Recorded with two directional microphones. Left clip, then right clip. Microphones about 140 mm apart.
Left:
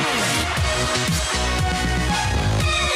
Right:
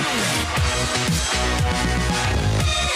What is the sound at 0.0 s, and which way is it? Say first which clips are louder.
Music: left 1 dB; centre (ahead or behind).